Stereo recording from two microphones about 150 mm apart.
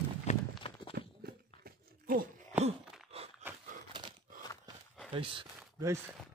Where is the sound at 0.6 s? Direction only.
35° left (ahead or behind).